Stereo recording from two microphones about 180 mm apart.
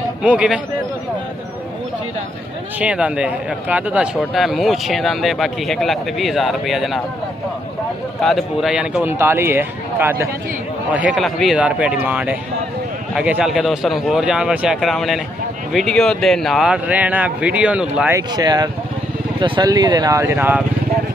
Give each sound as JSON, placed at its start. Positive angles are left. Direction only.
{"t": 0.2, "sound": "speech", "side_deg": -5}
{"t": 2.8, "sound": "speech", "side_deg": -5}
{"t": 8.2, "sound": "speech", "side_deg": 0}
{"t": 18.1, "sound": "speech", "side_deg": -20}